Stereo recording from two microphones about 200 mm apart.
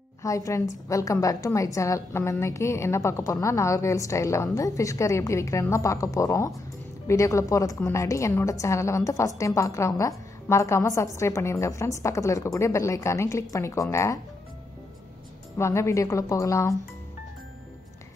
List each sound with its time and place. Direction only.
0.2 s a woman's voice: 15° left (ahead or behind)
15.5 s a woman's voice: 15° left (ahead or behind)